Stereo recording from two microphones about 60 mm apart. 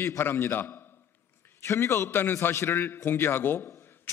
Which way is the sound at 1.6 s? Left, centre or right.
Left.